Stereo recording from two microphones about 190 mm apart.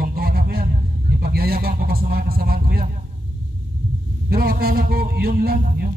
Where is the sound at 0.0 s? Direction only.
50° right (ahead or behind).